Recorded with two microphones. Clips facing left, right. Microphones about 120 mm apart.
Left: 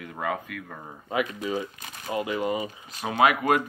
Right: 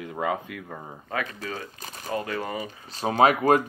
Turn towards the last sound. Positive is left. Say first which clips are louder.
# right 2 dB
turn(degrees=-35)  # may be behind; listen again after turning